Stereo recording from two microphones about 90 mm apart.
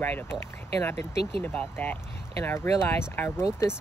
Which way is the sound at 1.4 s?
20° left (ahead or behind).